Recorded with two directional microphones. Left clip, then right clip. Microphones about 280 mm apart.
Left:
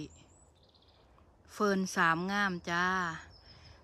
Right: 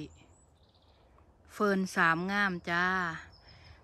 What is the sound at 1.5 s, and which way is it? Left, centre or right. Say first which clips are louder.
Speech: right 1 dB; centre.